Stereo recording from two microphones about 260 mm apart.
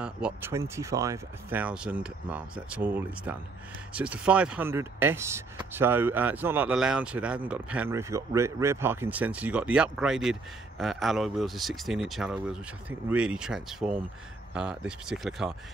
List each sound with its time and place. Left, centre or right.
0.0 s speech: centre